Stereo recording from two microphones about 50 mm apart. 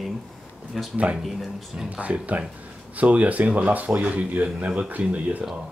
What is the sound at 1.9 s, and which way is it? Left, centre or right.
Speech, right.